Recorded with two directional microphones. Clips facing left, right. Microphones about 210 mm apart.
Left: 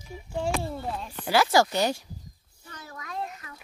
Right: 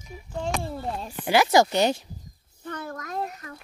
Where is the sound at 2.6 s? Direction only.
55° right (ahead or behind).